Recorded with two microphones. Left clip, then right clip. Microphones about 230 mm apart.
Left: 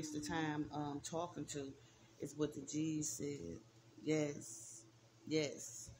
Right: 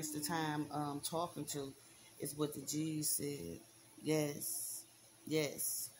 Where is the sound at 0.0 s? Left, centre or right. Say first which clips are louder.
Right 2 dB; right.